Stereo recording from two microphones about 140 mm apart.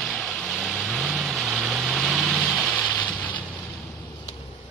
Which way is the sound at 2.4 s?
5° left (ahead or behind).